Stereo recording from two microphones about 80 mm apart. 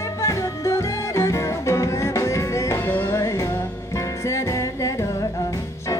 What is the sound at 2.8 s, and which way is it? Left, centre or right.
Music, left.